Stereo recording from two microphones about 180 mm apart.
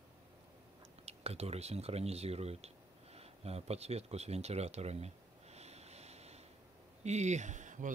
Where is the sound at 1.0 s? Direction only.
35° right (ahead or behind).